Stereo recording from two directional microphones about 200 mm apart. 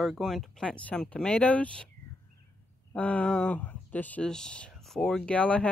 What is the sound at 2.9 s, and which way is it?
Speech, 5° left (ahead or behind).